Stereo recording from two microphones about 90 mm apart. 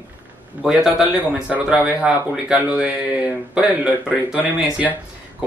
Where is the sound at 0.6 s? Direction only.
10° right (ahead or behind).